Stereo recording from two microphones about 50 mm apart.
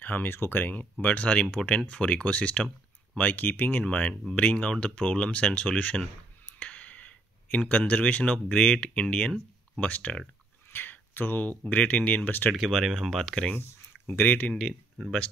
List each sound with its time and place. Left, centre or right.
0.0 s speech: left
1.0 s speech: left
3.2 s speech: left; by 9.3 s centre
9.8 s speech: left
10.7 s a sound: left
11.7 s speech: left
12.3 s speech: left
12.5 s speech: centre
13.2 s speech: centre
14.0 s speech: left